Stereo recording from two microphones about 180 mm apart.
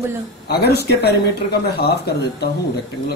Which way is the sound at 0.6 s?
65° left (ahead or behind).